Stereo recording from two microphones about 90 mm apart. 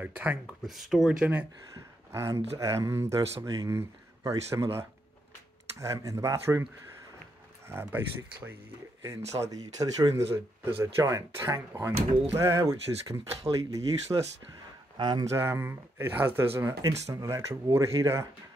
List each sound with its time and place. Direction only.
0.0 s speech: 20° right (ahead or behind)
0.7 s speech: centre (ahead or behind)
1.2 s speech: 20° right (ahead or behind)
1.8 s speech: 35° right (ahead or behind)
7.6 s speech: 25° right (ahead or behind)
9.0 s speech: 35° right (ahead or behind)
15.0 s speech: 55° right (ahead or behind)
15.3 s speech: 30° right (ahead or behind)